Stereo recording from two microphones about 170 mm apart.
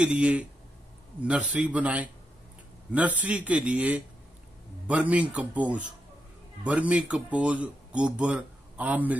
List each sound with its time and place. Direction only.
0.0 s speech: 5° right (ahead or behind)